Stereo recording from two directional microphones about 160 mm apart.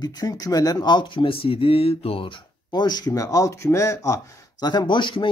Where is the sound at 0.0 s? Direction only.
25° left (ahead or behind).